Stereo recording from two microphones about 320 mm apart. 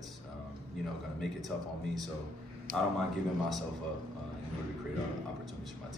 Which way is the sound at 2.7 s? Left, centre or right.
Right.